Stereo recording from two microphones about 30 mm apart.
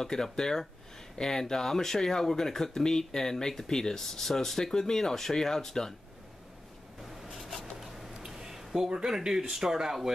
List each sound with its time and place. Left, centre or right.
0.0 s speech: centre
8.4 s a sound: centre
9.3 s speech: centre